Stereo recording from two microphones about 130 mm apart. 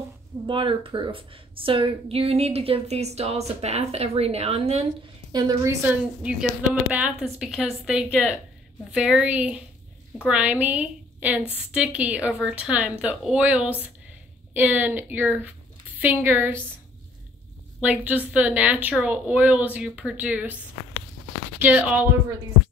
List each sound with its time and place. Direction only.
0.5 s a woman's voice: 40° right (ahead or behind)
5.3 s a woman's voice: 30° right (ahead or behind)
17.7 s speech: 10° right (ahead or behind)
21.5 s speech: 10° right (ahead or behind)